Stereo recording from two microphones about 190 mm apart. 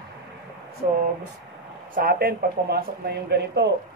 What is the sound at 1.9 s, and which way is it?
Speech, 50° right (ahead or behind).